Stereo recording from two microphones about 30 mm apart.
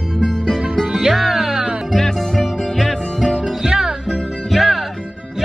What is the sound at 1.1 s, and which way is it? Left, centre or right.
Music, centre.